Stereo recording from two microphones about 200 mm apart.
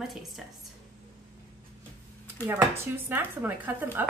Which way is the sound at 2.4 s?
10° right (ahead or behind).